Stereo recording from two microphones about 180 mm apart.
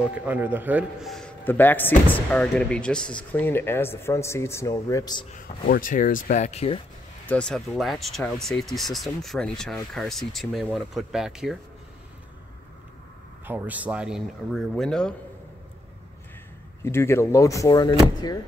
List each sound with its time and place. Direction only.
0.2 s speech: 10° right (ahead or behind)
1.1 s speech: 10° left (ahead or behind)
5.7 s speech: 50° left (ahead or behind)
7.2 s speech: 5° left (ahead or behind)
13.5 s speech: 10° right (ahead or behind)
16.8 s speech: 15° left (ahead or behind)